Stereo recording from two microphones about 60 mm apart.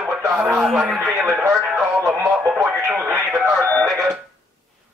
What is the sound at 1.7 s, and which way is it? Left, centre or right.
Music, centre.